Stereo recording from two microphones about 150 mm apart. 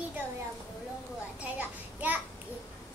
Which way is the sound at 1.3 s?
10° right (ahead or behind).